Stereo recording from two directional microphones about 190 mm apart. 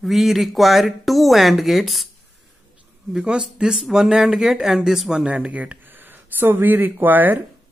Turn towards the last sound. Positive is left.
turn(degrees=-10)  # may be behind; listen again after turning